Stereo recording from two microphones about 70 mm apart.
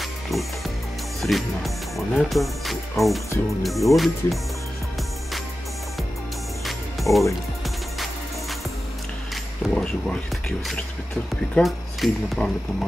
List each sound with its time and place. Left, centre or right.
0.0 s music: centre
1.2 s speech: centre
6.6 s music: centre
9.3 s speech: centre
11.6 s speech: centre
12.0 s speech: centre
12.4 s speech: left